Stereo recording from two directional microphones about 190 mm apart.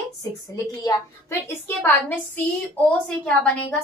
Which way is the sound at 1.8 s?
10° left (ahead or behind).